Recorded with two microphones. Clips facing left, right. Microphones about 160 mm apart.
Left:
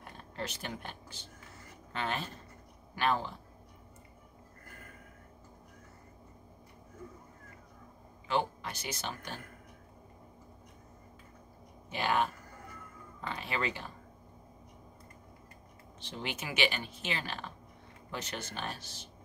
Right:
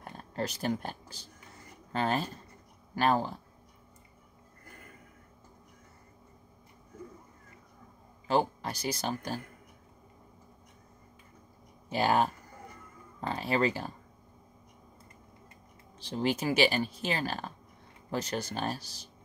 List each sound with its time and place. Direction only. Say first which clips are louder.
0.0 s speech: right 5 dB; 40° right (ahead or behind)
8.3 s a man's voice: right 4 dB; 35° right (ahead or behind)
11.9 s speech: right 4 dB; 35° right (ahead or behind)
16.0 s speech: right 10 dB; 35° right (ahead or behind)